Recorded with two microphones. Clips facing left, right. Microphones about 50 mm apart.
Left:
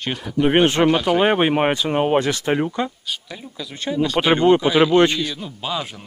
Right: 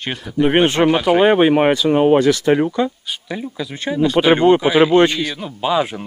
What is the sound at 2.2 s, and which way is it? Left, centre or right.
Speech, left.